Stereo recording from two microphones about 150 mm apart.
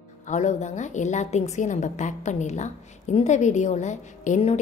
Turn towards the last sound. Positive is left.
turn(degrees=50)  # may be behind; listen again after turning